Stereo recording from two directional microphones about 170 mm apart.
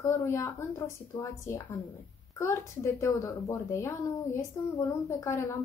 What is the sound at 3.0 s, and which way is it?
A woman's voice, 15° left (ahead or behind).